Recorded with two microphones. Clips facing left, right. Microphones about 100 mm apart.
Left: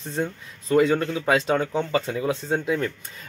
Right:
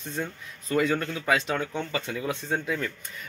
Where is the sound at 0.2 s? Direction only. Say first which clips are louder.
Left 7 dB; 25° left (ahead or behind).